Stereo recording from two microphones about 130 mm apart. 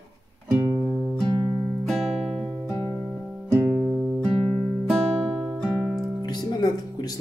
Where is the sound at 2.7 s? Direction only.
20° left (ahead or behind).